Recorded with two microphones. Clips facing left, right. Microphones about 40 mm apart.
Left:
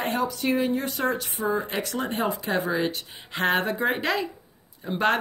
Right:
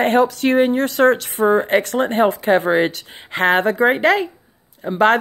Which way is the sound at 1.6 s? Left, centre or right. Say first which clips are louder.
Right 11 dB; right.